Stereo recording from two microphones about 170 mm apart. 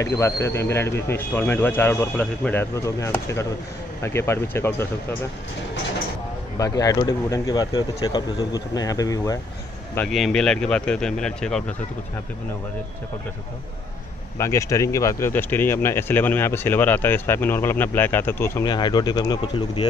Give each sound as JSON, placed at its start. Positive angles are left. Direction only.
{"t": 0.0, "sound": "speech", "side_deg": 15}
{"t": 6.6, "sound": "speech", "side_deg": 20}
{"t": 9.9, "sound": "speech", "side_deg": 5}
{"t": 14.4, "sound": "speech", "side_deg": 15}